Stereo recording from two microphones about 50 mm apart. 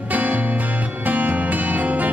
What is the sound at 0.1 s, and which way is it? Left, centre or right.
Music, right.